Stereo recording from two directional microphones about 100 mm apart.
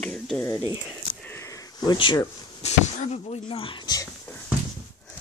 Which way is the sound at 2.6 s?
90° left.